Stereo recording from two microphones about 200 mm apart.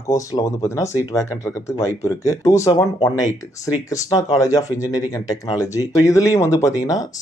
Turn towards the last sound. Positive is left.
turn(degrees=15)  # may be behind; listen again after turning